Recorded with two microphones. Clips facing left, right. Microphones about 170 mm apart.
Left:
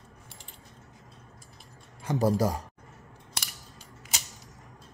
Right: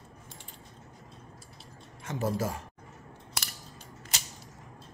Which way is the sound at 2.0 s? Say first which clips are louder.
Left 6 dB; 35° left (ahead or behind).